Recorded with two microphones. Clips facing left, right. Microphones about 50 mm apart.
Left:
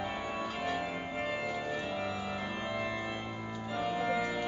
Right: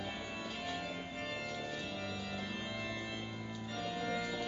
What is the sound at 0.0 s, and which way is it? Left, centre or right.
Organ, centre.